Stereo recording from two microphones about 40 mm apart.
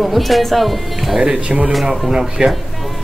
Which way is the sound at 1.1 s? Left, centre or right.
Centre.